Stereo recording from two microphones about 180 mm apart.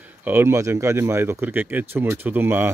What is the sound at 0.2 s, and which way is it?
Speech, 10° right (ahead or behind).